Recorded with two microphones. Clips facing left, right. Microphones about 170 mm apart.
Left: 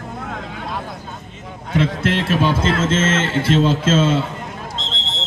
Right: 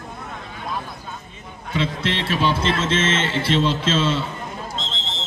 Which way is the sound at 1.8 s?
50° left (ahead or behind).